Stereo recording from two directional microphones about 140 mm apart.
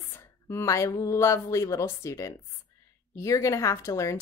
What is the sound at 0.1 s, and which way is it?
A woman's voice, 20° left (ahead or behind).